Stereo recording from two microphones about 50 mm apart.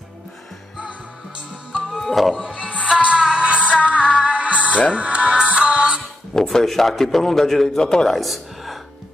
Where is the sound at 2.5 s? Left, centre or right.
Left.